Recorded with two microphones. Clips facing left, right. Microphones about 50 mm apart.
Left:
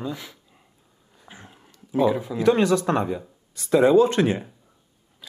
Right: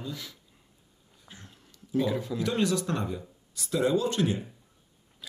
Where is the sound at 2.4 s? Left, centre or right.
Left.